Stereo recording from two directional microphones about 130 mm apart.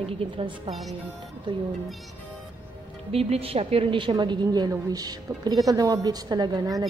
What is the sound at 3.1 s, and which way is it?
A woman's voice, 50° right (ahead or behind).